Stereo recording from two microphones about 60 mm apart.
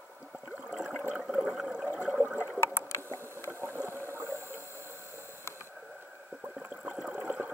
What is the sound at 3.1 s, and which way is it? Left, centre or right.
Boat, right.